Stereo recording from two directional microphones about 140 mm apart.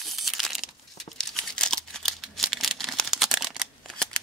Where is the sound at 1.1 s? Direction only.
5° left (ahead or behind).